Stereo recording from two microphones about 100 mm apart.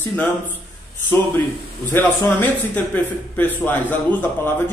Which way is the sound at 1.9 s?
20° left (ahead or behind).